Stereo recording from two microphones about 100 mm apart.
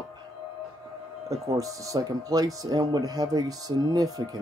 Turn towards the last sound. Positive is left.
turn(degrees=-40)  # may be behind; listen again after turning